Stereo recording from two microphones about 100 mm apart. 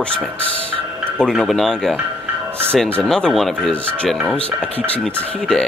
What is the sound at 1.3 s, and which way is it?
Speech, centre (ahead or behind).